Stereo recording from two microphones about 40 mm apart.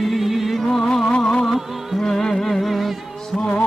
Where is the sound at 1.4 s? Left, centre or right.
Centre.